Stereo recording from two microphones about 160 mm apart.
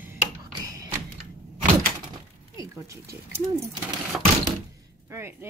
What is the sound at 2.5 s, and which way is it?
Speech, 20° right (ahead or behind).